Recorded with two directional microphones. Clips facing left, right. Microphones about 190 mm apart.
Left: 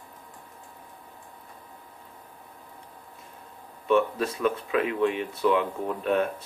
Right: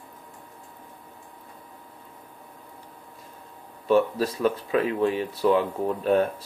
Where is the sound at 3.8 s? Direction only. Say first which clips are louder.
Right 2 dB; 35° right (ahead or behind).